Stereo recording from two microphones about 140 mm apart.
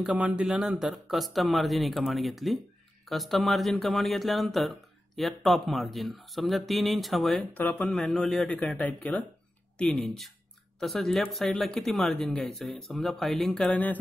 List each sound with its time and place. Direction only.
0.0 s a man's voice: 10° right (ahead or behind)
7.5 s a man's voice: 10° left (ahead or behind)